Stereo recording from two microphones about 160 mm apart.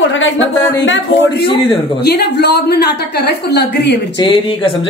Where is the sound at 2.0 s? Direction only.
90° left.